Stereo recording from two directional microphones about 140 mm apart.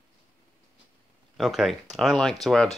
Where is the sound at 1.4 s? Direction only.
Centre (ahead or behind).